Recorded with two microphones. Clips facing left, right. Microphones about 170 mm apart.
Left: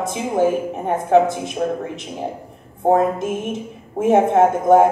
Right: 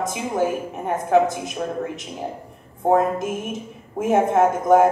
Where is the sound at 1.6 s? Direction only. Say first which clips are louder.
Left 6 dB; 40° left (ahead or behind).